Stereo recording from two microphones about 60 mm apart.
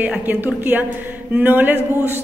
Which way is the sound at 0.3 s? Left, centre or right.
Right.